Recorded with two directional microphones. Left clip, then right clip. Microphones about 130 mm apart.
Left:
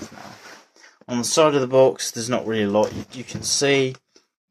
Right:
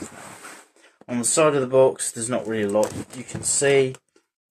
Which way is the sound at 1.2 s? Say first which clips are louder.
Left 2 dB; 35° left (ahead or behind).